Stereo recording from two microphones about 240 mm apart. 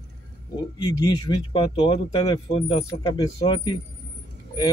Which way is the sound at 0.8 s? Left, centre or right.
Centre.